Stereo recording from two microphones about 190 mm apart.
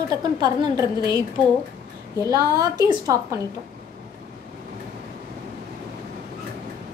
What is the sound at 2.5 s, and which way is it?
Speech, 20° right (ahead or behind).